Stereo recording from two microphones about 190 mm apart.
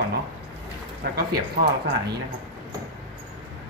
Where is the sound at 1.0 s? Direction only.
60° right (ahead or behind).